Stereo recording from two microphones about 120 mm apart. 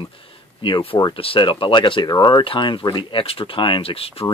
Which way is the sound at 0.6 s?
45° left (ahead or behind).